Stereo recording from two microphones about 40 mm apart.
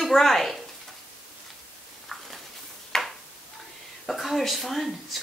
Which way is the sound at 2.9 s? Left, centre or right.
Centre.